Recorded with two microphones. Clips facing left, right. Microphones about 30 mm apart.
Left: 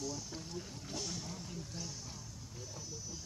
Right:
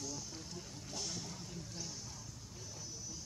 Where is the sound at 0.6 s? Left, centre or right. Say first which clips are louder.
Left 3 dB; centre.